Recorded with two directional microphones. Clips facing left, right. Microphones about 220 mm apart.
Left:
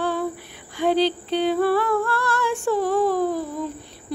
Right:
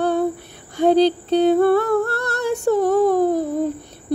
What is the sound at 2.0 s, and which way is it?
Female singing, 40° right (ahead or behind).